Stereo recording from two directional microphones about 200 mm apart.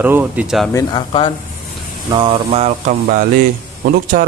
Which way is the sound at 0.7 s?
25° left (ahead or behind).